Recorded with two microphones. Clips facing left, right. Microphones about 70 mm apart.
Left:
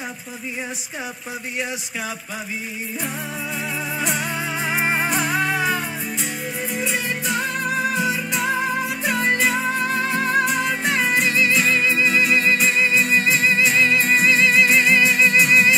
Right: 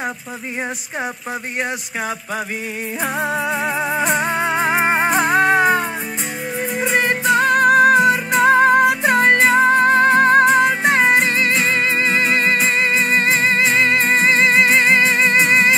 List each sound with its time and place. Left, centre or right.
3.0 s music: right
4.7 s music: right